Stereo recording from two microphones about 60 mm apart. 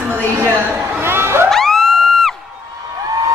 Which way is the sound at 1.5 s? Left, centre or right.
Centre.